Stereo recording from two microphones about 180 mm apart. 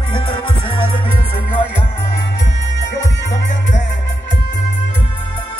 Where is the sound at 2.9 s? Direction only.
75° left (ahead or behind).